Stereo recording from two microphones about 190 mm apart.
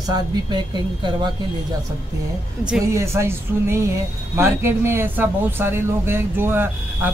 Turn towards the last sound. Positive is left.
turn(degrees=-10)  # may be behind; listen again after turning